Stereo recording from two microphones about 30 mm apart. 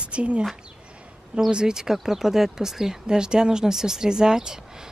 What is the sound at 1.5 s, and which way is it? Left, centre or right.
Speech, right.